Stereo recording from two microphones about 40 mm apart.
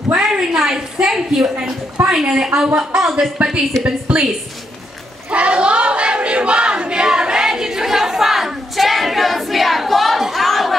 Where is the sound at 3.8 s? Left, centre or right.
Right.